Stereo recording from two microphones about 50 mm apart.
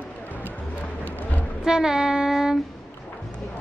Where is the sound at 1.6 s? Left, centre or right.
Centre.